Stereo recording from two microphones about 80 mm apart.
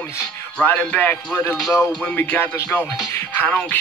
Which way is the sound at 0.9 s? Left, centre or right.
Left.